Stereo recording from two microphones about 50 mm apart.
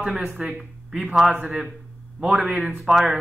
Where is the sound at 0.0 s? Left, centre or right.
Right.